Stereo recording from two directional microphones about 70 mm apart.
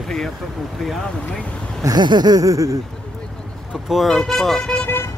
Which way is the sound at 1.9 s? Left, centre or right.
Right.